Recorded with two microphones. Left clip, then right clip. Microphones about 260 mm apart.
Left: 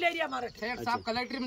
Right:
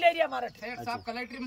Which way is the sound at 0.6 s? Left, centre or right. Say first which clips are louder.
Left 3 dB; centre.